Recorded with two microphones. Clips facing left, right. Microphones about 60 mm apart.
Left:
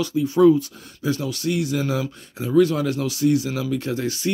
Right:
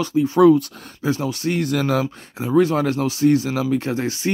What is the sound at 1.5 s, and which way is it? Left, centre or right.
Speech, right.